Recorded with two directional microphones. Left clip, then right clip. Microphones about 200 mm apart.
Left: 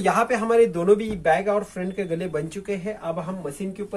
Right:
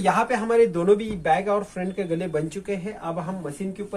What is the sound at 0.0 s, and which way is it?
Speech, 5° right (ahead or behind).